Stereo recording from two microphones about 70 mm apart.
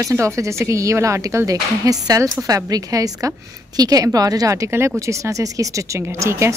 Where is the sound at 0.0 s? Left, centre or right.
Right.